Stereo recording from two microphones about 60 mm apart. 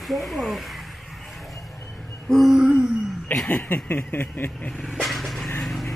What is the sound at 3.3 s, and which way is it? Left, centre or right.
Speech, left.